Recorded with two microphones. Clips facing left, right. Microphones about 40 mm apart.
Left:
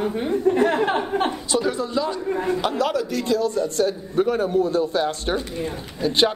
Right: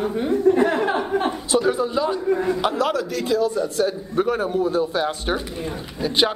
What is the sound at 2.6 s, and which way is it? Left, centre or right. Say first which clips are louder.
A man's voice: right 1 dB; centre.